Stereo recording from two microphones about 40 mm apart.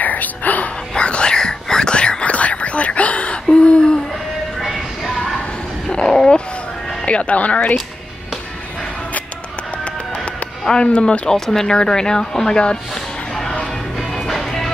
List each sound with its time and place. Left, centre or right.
0.0 s whispering: left
0.9 s whispering: left
2.2 s whispering: left
3.5 s hoot: left
5.9 s a sound: left
7.1 s speech: left
10.8 s speech: left
11.2 s speech: centre
13.9 s music: centre